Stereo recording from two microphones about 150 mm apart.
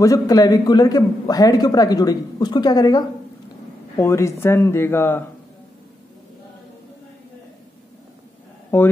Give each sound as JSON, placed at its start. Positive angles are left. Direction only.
{"t": 0.0, "sound": "a man's voice", "side_deg": 25}